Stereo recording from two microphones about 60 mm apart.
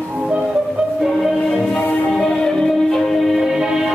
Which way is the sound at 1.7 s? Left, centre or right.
Left.